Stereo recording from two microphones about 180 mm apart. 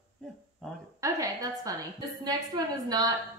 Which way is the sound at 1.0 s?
20° right (ahead or behind).